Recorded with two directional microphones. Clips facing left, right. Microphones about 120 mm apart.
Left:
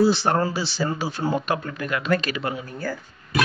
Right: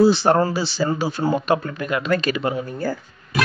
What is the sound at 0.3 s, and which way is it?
Speech, 35° right (ahead or behind).